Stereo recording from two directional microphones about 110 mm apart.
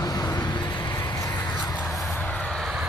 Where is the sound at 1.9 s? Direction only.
25° left (ahead or behind); by 2.7 s 5° left (ahead or behind).